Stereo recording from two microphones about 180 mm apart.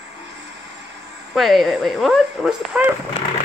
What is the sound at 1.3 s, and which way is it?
Speech, centre (ahead or behind).